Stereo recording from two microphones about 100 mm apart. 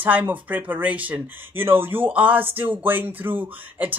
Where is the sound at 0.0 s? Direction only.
15° right (ahead or behind).